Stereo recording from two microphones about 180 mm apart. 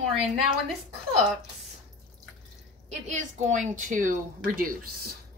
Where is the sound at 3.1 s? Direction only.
40° right (ahead or behind).